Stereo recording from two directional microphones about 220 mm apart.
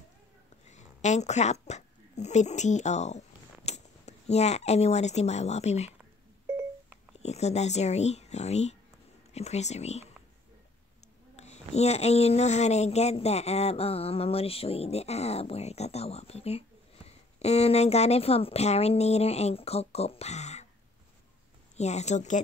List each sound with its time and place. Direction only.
0.7 s speech: 30° left (ahead or behind)
7.2 s speech: 30° left (ahead or behind)
11.3 s speech: 30° left (ahead or behind)
21.7 s a woman's voice: 30° left (ahead or behind)